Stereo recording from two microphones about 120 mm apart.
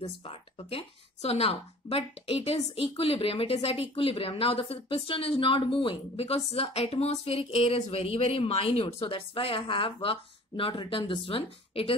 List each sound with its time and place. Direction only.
0.0 s speech: 55° left (ahead or behind)